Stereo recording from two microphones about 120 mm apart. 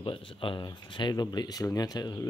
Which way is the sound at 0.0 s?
45° left (ahead or behind).